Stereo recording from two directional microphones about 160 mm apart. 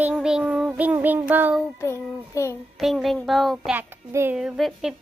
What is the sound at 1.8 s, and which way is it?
Child singing, 20° left (ahead or behind).